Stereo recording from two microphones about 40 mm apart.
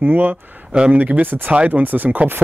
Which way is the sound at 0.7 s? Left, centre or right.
Right.